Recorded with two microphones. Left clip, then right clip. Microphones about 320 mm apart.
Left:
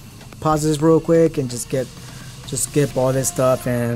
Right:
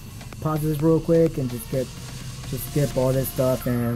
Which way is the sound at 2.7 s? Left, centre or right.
Centre.